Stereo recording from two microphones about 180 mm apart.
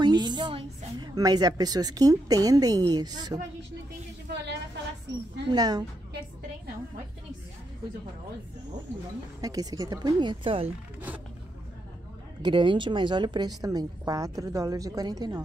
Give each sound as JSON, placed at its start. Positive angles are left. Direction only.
{"t": 0.0, "sound": "a woman's voice", "side_deg": -25}
{"t": 5.5, "sound": "a woman's voice", "side_deg": -20}
{"t": 9.4, "sound": "a woman's voice", "side_deg": -20}
{"t": 12.4, "sound": "a woman's voice", "side_deg": -25}